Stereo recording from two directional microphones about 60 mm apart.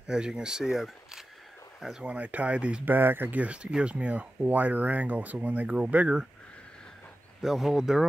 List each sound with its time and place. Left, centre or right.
0.0 s speech: centre
2.0 s speech: right
2.8 s speech: right
7.4 s speech: centre